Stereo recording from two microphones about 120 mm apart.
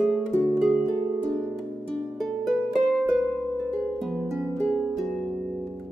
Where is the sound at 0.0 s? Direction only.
5° right (ahead or behind).